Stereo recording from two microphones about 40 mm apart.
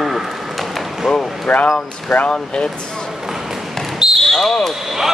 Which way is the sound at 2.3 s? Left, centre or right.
Left.